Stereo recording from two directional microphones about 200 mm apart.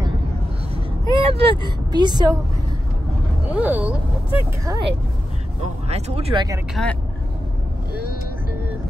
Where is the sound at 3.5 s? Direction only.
10° right (ahead or behind).